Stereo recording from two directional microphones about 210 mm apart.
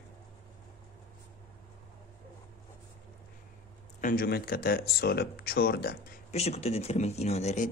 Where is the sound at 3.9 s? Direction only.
40° left (ahead or behind).